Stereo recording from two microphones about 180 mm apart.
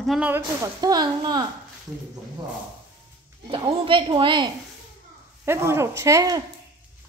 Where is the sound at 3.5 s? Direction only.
30° right (ahead or behind).